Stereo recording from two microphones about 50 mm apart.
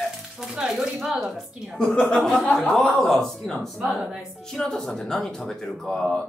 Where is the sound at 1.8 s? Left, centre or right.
Centre.